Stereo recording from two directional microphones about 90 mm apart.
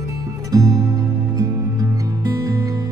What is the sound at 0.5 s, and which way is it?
Music, 40° right (ahead or behind).